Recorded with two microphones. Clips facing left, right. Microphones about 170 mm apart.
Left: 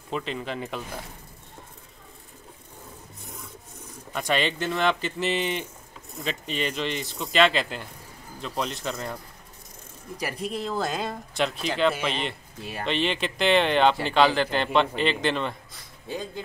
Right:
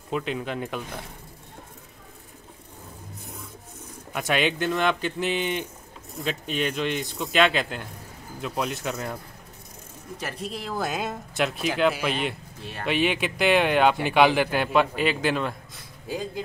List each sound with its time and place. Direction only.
0.1 s speech: 5° right (ahead or behind)
4.1 s speech: 5° right (ahead or behind)
10.6 s speech: 5° right (ahead or behind)